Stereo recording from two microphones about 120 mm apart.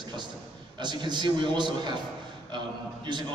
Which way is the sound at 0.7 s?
40° right (ahead or behind).